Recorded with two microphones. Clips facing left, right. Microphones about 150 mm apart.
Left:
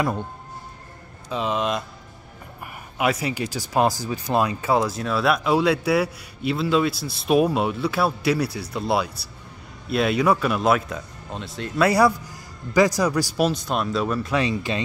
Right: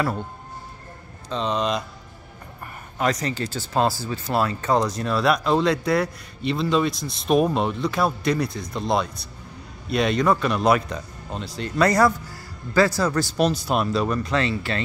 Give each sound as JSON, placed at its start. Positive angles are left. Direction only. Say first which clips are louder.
{"t": 0.0, "sound": "speech", "louder": "left 1 dB", "side_deg": 15}
{"t": 1.3, "sound": "speech", "louder": "even", "side_deg": 5}
{"t": 3.0, "sound": "speech", "louder": "left 1 dB", "side_deg": 10}
{"t": 13.5, "sound": "speech", "louder": "right 2 dB", "side_deg": -5}